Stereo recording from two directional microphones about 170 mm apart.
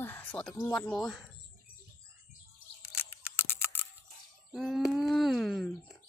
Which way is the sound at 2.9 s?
10° right (ahead or behind).